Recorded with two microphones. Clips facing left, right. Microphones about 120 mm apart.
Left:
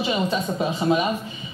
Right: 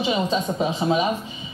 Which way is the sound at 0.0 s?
15° right (ahead or behind).